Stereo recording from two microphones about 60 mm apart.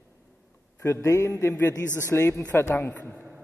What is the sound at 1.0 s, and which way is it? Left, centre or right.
Speech, left.